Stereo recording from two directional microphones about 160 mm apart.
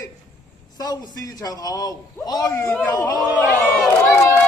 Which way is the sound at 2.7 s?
10° left (ahead or behind).